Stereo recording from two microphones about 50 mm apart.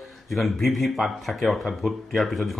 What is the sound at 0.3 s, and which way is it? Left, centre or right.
Speech, centre.